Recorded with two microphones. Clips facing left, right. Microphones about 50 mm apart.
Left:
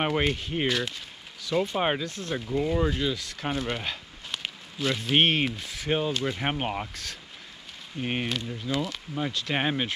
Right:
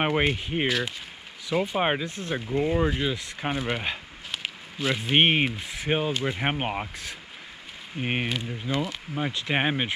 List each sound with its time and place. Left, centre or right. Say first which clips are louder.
0.0 s speech: right 2 dB; centre